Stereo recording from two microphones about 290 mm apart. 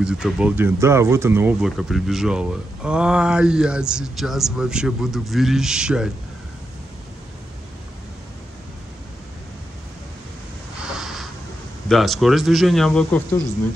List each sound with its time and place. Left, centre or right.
0.0 s speech: centre
10.8 s a sound: centre
11.9 s speech: centre